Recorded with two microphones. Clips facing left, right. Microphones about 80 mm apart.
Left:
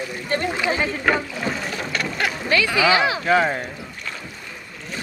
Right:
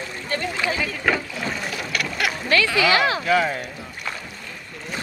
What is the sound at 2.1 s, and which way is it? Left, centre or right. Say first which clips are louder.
Boat: even; left.